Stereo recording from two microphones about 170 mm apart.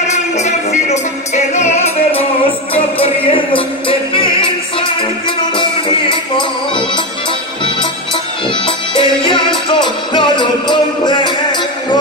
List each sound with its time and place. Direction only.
0.1 s music: 40° left (ahead or behind)
2.7 s music: 35° left (ahead or behind)
8.6 s music: 30° left (ahead or behind)